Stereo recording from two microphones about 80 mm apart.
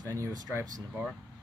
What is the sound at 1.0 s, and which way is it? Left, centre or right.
Speech, right.